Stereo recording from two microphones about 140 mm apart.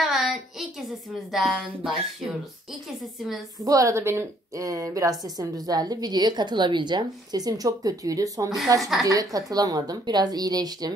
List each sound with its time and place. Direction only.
0.0 s a sound: centre (ahead or behind)
1.3 s speech: 5° left (ahead or behind)
3.2 s speech: centre (ahead or behind)
3.6 s a woman's voice: 25° right (ahead or behind)